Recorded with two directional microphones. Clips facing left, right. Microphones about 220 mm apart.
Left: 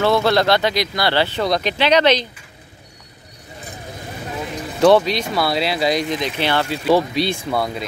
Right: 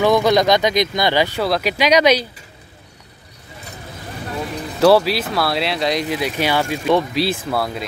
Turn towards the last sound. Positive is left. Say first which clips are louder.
# even
turn(degrees=0)  # may be behind; listen again after turning